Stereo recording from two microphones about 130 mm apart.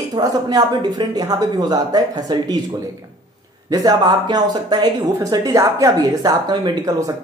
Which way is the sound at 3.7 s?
30° right (ahead or behind).